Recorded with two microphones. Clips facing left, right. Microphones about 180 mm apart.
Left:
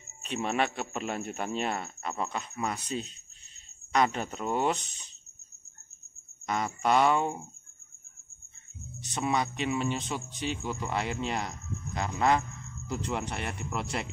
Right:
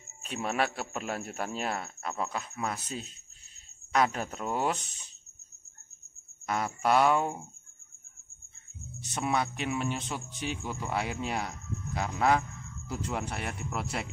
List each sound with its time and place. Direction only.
0.2 s speech: 5° right (ahead or behind)
6.4 s speech: 5° right (ahead or behind)
9.0 s speech: 5° right (ahead or behind)